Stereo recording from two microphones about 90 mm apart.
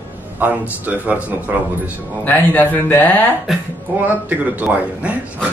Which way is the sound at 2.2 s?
20° left (ahead or behind).